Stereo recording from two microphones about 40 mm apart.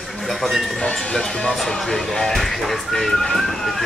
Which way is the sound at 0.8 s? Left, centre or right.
Left.